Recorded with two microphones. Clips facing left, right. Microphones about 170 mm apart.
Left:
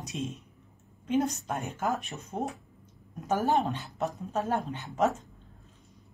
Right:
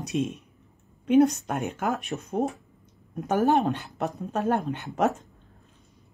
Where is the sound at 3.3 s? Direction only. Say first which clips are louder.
Right 5 dB; 75° right (ahead or behind).